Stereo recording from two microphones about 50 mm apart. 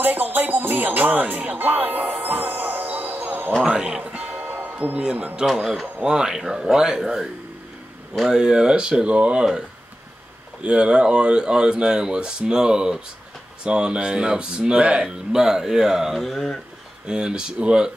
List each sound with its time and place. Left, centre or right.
0.0 s speech: right
3.7 s music: right
4.5 s a sound: right
5.1 s speech: right
5.4 s speech: centre